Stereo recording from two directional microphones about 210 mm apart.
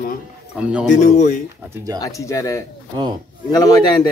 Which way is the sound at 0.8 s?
35° left (ahead or behind).